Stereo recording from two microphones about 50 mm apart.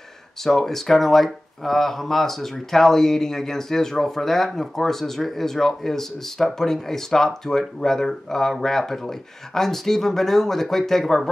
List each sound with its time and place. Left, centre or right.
0.4 s speech: centre